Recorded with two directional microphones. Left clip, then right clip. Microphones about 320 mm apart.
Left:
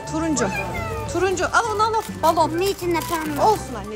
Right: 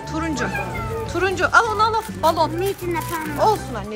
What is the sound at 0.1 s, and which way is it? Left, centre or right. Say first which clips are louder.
A woman's voice: left 2 dB; centre.